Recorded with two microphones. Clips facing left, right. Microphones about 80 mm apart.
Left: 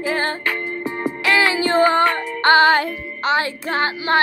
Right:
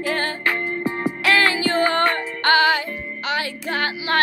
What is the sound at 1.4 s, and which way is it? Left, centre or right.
Music, centre.